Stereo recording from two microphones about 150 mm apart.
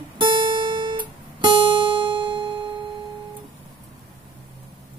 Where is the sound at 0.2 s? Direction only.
35° right (ahead or behind).